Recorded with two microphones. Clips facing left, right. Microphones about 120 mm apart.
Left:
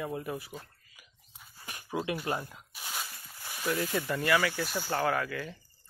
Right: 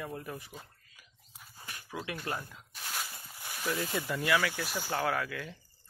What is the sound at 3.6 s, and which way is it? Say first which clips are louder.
Speech: left 3 dB; centre (ahead or behind).